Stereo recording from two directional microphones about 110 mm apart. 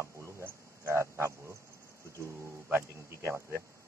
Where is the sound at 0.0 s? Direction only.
25° right (ahead or behind).